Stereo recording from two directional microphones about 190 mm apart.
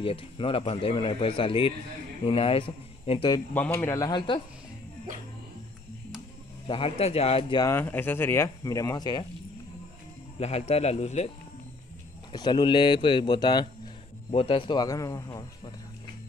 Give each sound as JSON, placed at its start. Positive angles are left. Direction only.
{"t": 0.0, "sound": "speech", "side_deg": 30}
{"t": 3.5, "sound": "speech", "side_deg": 10}
{"t": 6.7, "sound": "speech", "side_deg": 30}
{"t": 10.4, "sound": "speech", "side_deg": 35}
{"t": 12.3, "sound": "speech", "side_deg": 20}